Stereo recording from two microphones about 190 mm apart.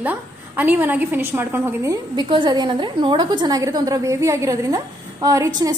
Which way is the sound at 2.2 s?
25° right (ahead or behind).